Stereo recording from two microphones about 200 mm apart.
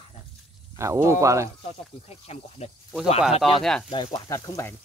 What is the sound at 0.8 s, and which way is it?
Speech, 15° right (ahead or behind).